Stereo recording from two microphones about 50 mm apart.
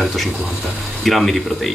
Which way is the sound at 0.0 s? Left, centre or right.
Centre.